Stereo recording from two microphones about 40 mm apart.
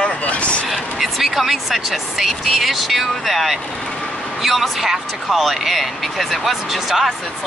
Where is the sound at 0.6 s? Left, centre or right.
Centre.